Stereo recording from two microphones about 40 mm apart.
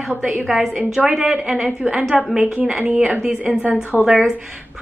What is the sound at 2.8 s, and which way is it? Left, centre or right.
Speech, right.